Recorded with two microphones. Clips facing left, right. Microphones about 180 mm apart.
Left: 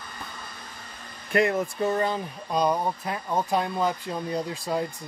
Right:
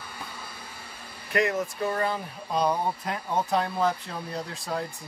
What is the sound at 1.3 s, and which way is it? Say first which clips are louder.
Speech: left 3 dB; 30° left (ahead or behind).